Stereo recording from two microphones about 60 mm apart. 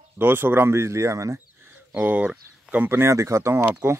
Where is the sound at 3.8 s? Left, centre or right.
Right.